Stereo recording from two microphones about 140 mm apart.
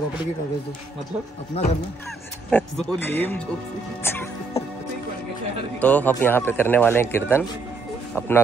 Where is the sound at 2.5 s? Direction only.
15° left (ahead or behind).